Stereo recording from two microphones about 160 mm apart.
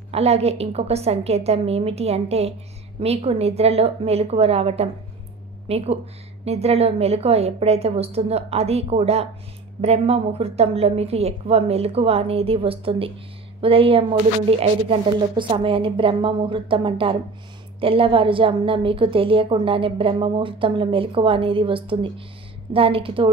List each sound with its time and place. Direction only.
0.1 s a woman's voice: 40° right (ahead or behind)